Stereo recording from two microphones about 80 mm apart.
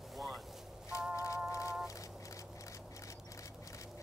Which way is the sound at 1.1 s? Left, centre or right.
Left.